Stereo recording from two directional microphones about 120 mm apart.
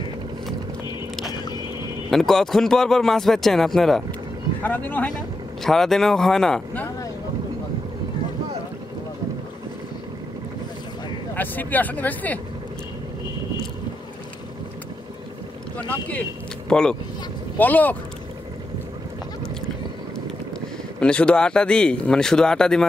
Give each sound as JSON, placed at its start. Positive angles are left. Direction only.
{"t": 2.0, "sound": "speech", "side_deg": 0}
{"t": 4.6, "sound": "speech", "side_deg": 15}
{"t": 5.1, "sound": "speech", "side_deg": 5}
{"t": 11.3, "sound": "speech", "side_deg": 15}
{"t": 15.9, "sound": "speech", "side_deg": 15}
{"t": 21.0, "sound": "speech", "side_deg": 10}